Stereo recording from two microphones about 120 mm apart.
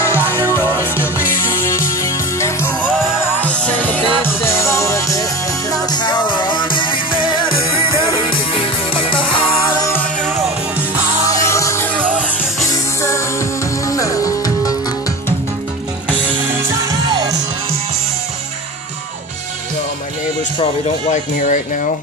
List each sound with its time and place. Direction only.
0.0 s music: 20° left (ahead or behind)
3.3 s music: 10° left (ahead or behind)
5.7 s music: 35° left (ahead or behind)
11.3 s music: 25° left (ahead or behind)
12.0 s music: 15° right (ahead or behind)
13.0 s music: 25° left (ahead or behind)
21.1 s speech: 90° left